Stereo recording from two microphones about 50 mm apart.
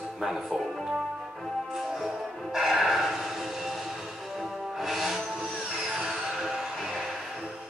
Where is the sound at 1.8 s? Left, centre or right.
Centre.